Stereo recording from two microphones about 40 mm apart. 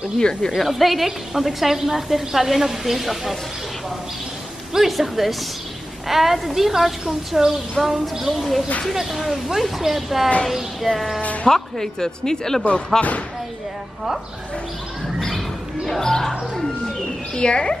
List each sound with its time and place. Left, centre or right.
0.2 s speech: left
0.6 s a woman's voice: centre
4.7 s a woman's voice: centre
11.4 s speech: centre
15.1 s a woman's voice: centre; by 17.7 s left